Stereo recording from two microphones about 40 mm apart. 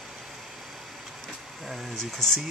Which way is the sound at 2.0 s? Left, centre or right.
Centre.